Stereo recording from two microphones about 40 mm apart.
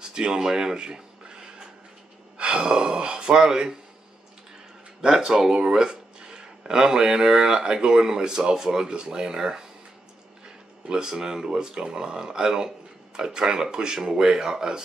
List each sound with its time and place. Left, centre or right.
0.0 s writing: centre
2.3 s speech: right
5.0 s speech: centre